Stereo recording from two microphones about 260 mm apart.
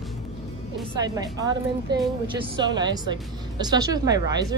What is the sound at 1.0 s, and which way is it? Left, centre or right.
Speech, centre.